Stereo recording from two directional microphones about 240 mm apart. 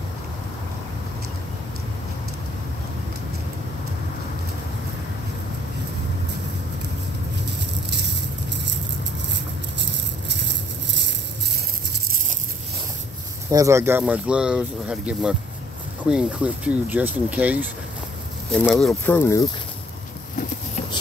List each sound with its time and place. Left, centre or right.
7.9 s rattle: right
9.8 s rattle: right
13.5 s speech: centre